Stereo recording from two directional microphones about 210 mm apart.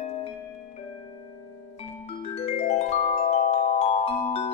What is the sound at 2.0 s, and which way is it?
Music, 30° left (ahead or behind).